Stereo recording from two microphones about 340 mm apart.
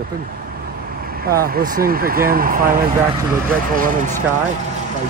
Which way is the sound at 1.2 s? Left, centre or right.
Right.